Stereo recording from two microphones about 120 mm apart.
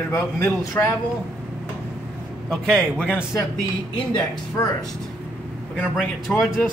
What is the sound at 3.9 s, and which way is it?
Speech, 35° left (ahead or behind).